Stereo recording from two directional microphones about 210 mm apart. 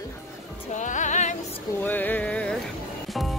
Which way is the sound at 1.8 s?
10° left (ahead or behind).